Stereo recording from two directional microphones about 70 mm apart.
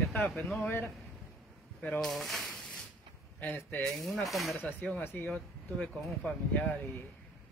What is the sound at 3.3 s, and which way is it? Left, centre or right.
Speech, left.